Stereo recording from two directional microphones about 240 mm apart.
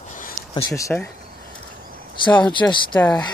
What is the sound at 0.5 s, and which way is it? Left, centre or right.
Speech, centre.